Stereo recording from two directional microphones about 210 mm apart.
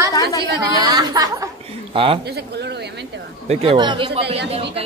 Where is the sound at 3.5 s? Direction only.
25° right (ahead or behind).